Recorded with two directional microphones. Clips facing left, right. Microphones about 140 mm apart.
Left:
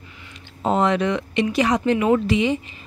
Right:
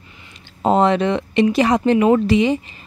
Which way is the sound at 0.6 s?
35° right (ahead or behind).